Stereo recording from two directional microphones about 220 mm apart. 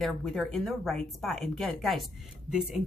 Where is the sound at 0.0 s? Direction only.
Centre (ahead or behind).